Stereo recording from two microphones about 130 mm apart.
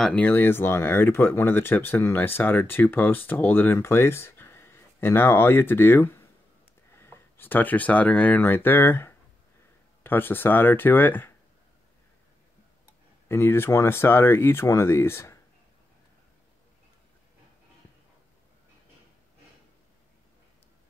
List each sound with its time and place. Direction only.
0.0 s speech: 10° left (ahead or behind)
13.3 s speech: 20° left (ahead or behind)